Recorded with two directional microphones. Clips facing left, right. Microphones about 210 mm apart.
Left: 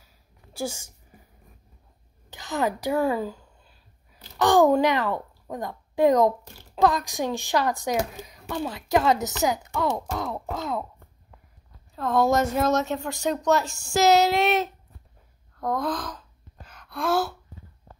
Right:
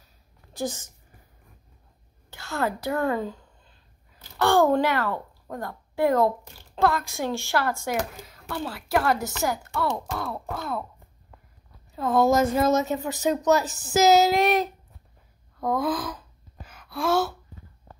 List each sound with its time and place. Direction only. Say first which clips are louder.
0.0 s a sound: left 2 dB; 10° left (ahead or behind)
2.3 s a woman's voice: left 2 dB; 15° left (ahead or behind)
3.0 s a sound: even; 5° left (ahead or behind)
4.4 s a woman's voice: left 2 dB; 15° left (ahead or behind)
11.9 s a woman's voice: right 1 dB; 5° right (ahead or behind)
16.6 s gasp: right 1 dB; 5° right (ahead or behind)